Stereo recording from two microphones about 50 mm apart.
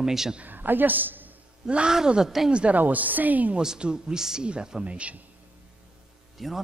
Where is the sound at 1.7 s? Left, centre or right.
Right; by 2.5 s centre.